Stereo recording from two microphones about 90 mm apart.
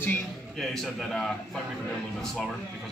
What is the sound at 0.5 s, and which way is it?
Speech, 5° left (ahead or behind).